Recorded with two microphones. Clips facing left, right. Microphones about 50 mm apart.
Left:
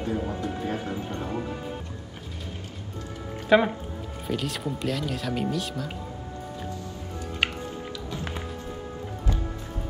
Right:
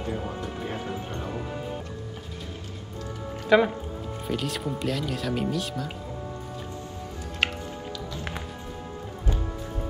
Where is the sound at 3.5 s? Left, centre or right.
Centre.